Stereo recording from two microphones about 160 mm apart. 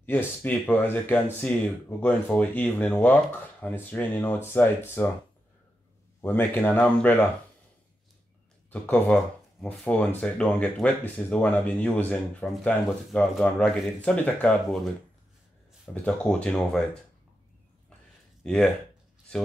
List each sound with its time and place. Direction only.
0.0 s speech: 10° left (ahead or behind)
6.2 s speech: 10° left (ahead or behind)
8.6 s speech: 10° left (ahead or behind)
15.9 s speech: 5° left (ahead or behind)
18.4 s speech: 5° left (ahead or behind)